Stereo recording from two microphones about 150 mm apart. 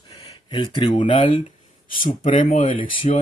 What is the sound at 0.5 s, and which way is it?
Speech, 30° left (ahead or behind).